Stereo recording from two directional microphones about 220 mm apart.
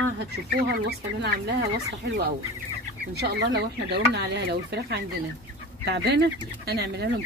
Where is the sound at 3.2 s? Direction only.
50° right (ahead or behind).